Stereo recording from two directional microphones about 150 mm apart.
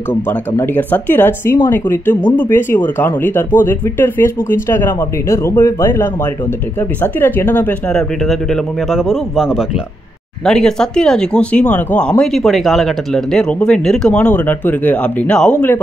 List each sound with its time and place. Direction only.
0.6 s speech: 10° left (ahead or behind)
8.3 s speech: centre (ahead or behind)